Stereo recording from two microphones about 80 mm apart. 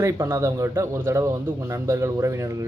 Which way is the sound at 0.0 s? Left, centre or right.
Right.